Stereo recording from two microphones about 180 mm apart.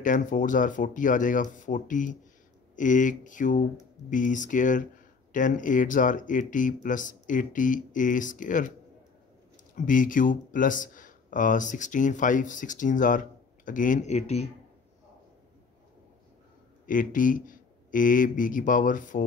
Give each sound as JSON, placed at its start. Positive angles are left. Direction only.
{"t": 0.0, "sound": "speech", "side_deg": 45}
{"t": 9.8, "sound": "speech", "side_deg": 50}
{"t": 16.8, "sound": "speech", "side_deg": 50}